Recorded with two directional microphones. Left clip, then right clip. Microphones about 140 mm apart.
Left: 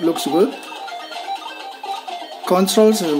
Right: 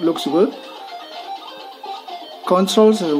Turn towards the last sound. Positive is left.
turn(degrees=10)  # may be behind; listen again after turning